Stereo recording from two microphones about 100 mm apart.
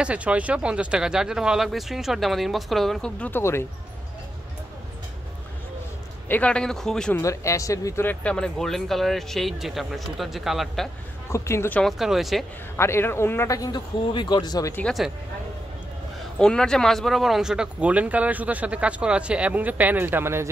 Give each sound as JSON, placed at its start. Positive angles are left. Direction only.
{"t": 0.0, "sound": "speech", "side_deg": -10}
{"t": 3.2, "sound": "a man's voice", "side_deg": 20}
{"t": 6.2, "sound": "speech", "side_deg": 15}
{"t": 7.2, "sound": "speech", "side_deg": 30}
{"t": 8.1, "sound": "speech", "side_deg": 10}
{"t": 11.2, "sound": "a man's voice", "side_deg": 30}
{"t": 11.8, "sound": "speech", "side_deg": -5}
{"t": 12.7, "sound": "a man's voice", "side_deg": 25}
{"t": 13.5, "sound": "speech", "side_deg": 40}
{"t": 16.3, "sound": "speech", "side_deg": 5}